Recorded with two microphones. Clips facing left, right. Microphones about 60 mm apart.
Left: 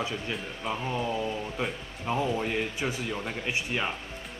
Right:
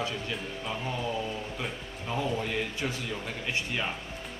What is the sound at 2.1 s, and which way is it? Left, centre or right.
A man's voice, centre.